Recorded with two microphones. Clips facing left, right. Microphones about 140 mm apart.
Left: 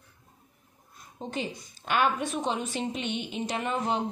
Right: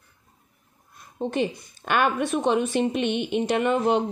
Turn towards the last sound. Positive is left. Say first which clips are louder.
# right 8 dB
turn(degrees=-65)  # may be behind; listen again after turning